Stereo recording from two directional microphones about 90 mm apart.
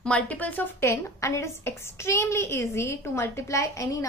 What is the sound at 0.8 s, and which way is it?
A woman's voice, 35° left (ahead or behind).